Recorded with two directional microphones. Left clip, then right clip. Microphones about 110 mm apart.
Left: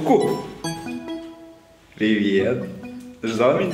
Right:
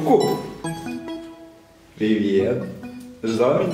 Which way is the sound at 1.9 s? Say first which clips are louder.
Even; 35° left (ahead or behind).